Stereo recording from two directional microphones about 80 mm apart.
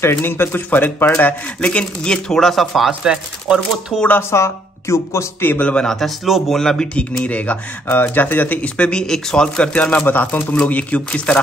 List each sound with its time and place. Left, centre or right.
0.0 s speech: left
1.6 s speech: centre
2.9 s chopping: centre
4.3 s speech: left; by 5.9 s centre
5.9 s speech: centre
7.2 s speech: centre